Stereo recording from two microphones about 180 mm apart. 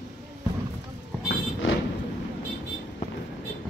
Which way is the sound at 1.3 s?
90° left.